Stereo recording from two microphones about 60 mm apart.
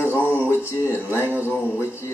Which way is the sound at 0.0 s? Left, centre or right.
Left.